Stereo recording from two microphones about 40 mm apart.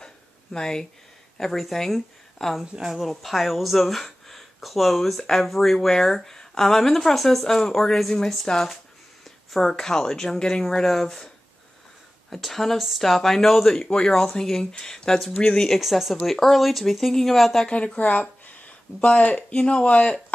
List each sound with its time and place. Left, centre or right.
0.0 s a sound: centre
1.4 s speech: centre
2.8 s a woman's voice: centre
12.3 s a woman's voice: centre; by 15.7 s left
15.7 s speech: centre
17.6 s speech: left